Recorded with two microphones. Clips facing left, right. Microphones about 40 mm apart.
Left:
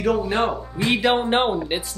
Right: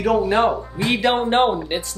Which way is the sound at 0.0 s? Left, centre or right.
Centre.